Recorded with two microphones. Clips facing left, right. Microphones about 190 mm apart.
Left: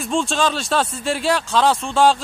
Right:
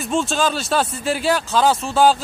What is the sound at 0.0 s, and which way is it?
Speech, centre (ahead or behind).